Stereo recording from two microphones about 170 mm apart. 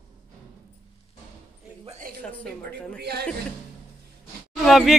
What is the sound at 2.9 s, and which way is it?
Speech, 75° right (ahead or behind).